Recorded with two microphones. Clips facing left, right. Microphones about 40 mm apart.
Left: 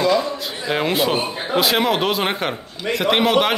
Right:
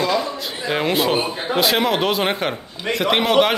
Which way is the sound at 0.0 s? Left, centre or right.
Centre.